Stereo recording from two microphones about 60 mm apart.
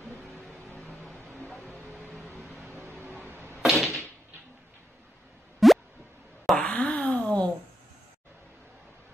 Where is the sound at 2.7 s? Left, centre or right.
Right.